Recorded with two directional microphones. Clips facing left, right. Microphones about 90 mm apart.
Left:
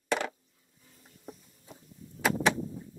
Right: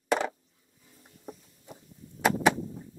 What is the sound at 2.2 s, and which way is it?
Vehicle, 5° right (ahead or behind).